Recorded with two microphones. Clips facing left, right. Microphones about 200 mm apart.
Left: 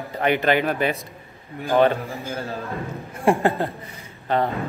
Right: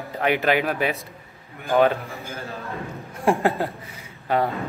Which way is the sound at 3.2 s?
Centre (ahead or behind).